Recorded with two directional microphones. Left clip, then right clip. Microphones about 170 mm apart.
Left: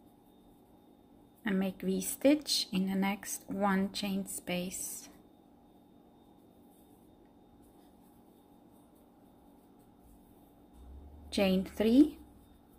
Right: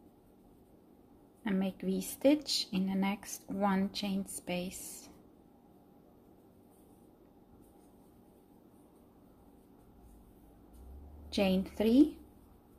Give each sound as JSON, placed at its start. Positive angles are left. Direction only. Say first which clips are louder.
{"t": 1.4, "sound": "speech", "louder": "left 1 dB", "side_deg": 5}
{"t": 11.2, "sound": "speech", "louder": "left 1 dB", "side_deg": 10}